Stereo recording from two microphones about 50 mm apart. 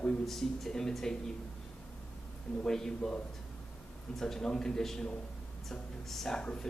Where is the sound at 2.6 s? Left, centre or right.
Centre.